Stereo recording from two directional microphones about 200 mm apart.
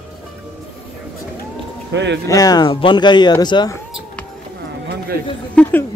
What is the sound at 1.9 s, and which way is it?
Speech, 60° right (ahead or behind).